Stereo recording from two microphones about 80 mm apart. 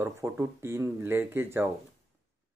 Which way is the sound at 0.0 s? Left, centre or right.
Right.